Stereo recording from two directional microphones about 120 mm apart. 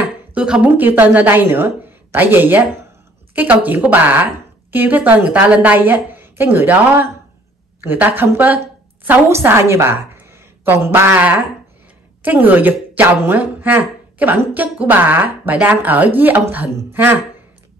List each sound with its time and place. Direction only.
0.0 s a woman's voice: 10° right (ahead or behind)